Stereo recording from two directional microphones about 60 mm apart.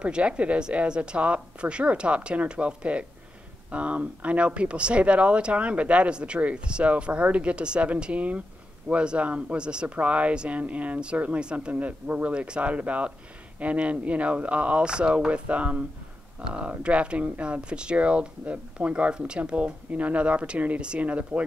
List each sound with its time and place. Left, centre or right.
0.0 s speech: centre